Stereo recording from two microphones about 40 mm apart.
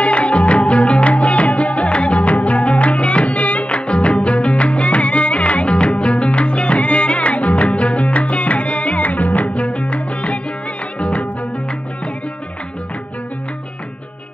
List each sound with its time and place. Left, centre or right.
0.0 s music: left